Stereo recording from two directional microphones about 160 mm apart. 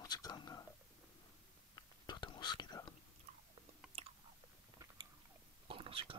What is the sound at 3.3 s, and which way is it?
Chewing, 45° right (ahead or behind).